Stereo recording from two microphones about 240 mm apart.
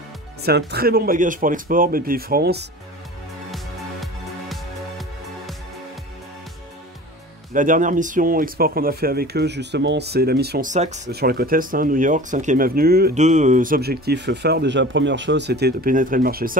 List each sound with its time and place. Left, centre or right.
0.5 s speech: right
3.5 s music: centre
7.5 s speech: right
11.1 s speech: right